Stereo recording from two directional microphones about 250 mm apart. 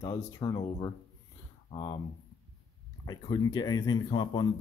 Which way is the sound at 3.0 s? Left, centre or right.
Centre.